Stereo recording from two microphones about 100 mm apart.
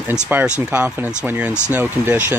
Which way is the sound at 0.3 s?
20° right (ahead or behind).